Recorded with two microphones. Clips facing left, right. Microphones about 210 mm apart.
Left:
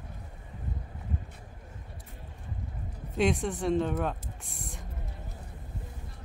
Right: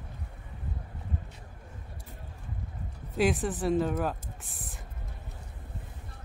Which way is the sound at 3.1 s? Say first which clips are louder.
Even; 5° right (ahead or behind).